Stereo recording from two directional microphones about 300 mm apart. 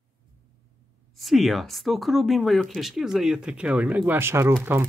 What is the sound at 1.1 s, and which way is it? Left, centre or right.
Speech, centre.